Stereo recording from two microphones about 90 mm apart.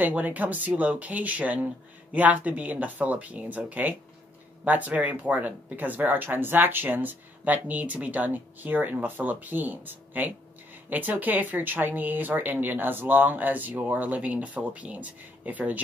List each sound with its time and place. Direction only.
0.0 s speech: 20° right (ahead or behind)